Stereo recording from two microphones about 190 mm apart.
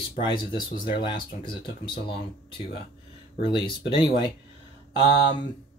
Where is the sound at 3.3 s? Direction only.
25° left (ahead or behind).